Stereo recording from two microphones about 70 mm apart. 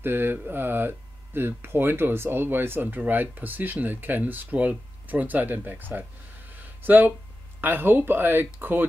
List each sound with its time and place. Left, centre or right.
0.0 s speech: right
6.5 s a sound: right
7.6 s speech: right